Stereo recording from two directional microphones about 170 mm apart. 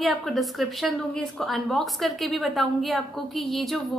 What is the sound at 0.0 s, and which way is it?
Speech, centre (ahead or behind).